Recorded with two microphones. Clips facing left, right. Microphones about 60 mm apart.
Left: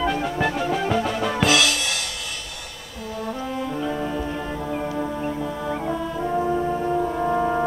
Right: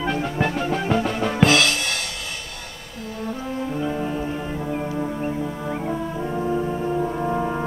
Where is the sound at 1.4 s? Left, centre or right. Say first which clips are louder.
Right 3 dB; centre.